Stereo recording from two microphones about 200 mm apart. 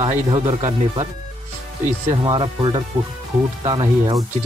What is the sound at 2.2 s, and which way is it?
Speech, 20° right (ahead or behind).